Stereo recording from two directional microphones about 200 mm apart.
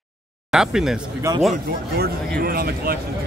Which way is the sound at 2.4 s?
50° right (ahead or behind).